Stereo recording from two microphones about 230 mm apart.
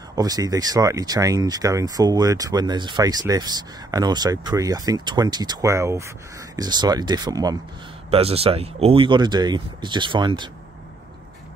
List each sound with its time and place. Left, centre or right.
0.1 s speech: centre